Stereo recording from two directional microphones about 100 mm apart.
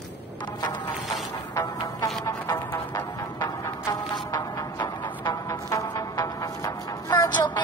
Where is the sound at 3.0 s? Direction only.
40° left (ahead or behind).